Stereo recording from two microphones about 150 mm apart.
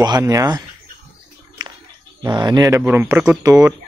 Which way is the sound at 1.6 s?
30° right (ahead or behind).